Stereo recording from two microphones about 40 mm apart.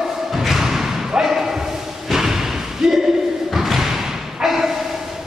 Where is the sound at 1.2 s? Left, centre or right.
Centre.